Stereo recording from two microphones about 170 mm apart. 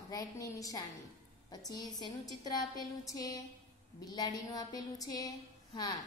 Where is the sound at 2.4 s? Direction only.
25° left (ahead or behind).